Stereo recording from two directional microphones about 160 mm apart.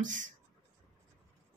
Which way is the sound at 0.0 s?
55° right (ahead or behind).